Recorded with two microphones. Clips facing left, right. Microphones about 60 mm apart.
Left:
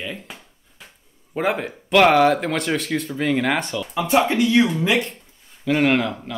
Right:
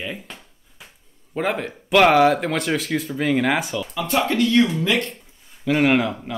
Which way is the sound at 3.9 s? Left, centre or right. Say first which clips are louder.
Left 3 dB; centre.